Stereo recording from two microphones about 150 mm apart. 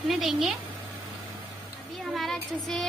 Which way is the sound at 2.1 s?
Centre (ahead or behind).